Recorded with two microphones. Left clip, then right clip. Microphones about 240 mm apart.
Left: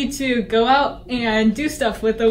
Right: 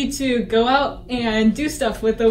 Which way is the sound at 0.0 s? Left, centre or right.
Centre.